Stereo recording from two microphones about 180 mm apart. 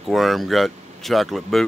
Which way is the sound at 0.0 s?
Centre (ahead or behind).